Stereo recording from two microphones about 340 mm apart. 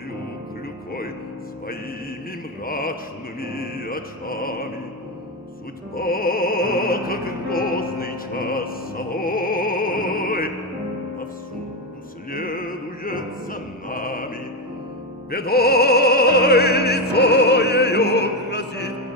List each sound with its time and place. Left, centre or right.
2.6 s music: left
5.9 s music: left
12.3 s opera: left
15.3 s opera: left